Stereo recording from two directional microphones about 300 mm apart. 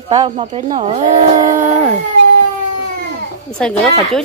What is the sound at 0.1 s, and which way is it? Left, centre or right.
Speech, centre.